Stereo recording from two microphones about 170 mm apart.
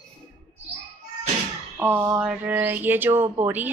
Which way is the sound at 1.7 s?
10° right (ahead or behind).